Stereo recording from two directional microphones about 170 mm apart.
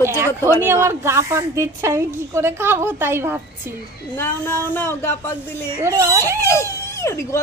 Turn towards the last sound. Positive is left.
turn(degrees=15)  # may be behind; listen again after turning